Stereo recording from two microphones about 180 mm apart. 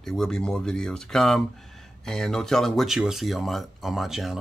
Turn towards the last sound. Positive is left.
turn(degrees=0)  # may be behind; listen again after turning